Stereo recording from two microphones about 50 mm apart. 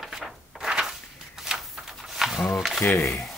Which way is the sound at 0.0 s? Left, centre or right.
Centre.